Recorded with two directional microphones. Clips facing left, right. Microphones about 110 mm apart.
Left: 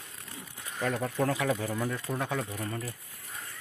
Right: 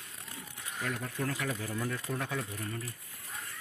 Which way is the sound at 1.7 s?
20° left (ahead or behind).